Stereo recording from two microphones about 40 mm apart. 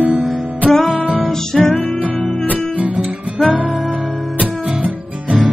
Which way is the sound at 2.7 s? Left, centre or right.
Right.